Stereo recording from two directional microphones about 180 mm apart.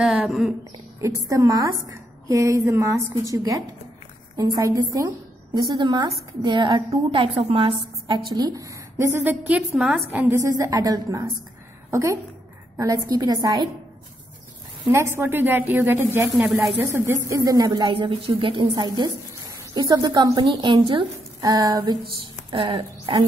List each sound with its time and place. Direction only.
0.0 s speech: 5° right (ahead or behind)
1.0 s a woman's voice: 15° right (ahead or behind); by 9.9 s centre (ahead or behind)
10.1 s a woman's voice: 15° right (ahead or behind)
15.1 s a woman's voice: 10° right (ahead or behind); by 23.2 s 30° right (ahead or behind)